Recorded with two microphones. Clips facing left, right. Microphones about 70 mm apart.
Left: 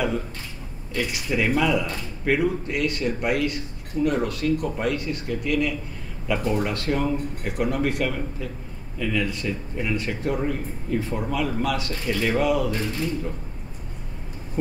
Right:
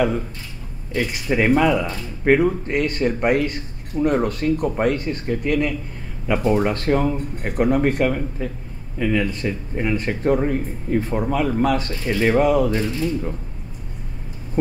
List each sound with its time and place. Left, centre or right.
0.9 s speech: right